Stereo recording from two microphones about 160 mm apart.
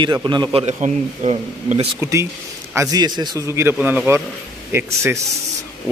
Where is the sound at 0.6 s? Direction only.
45° right (ahead or behind).